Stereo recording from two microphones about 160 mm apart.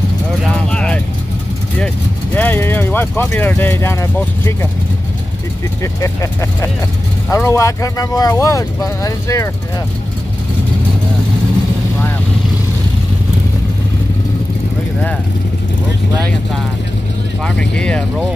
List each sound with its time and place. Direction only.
0.4 s vehicle: 5° left (ahead or behind)
2.3 s speech: 10° left (ahead or behind)
5.8 s speech: 20° left (ahead or behind)
7.2 s speech: 20° left (ahead or behind)
17.6 s speech: 5° left (ahead or behind)